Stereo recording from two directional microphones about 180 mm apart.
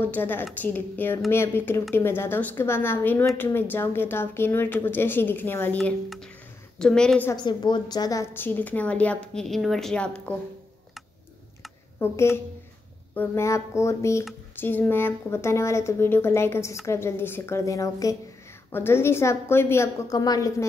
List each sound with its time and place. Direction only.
0.0 s a woman's voice: 10° left (ahead or behind)
7.3 s a woman's voice: 25° left (ahead or behind); by 10.3 s 5° left (ahead or behind)
12.0 s a woman's voice: 15° left (ahead or behind)